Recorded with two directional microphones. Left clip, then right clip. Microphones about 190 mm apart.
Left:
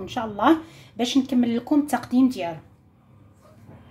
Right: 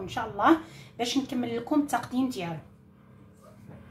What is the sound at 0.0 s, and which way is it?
A woman's voice, 45° left (ahead or behind).